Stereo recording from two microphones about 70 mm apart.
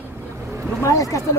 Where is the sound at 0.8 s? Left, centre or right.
Left.